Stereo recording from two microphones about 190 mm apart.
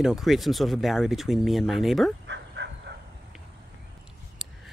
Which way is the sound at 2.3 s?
65° right (ahead or behind).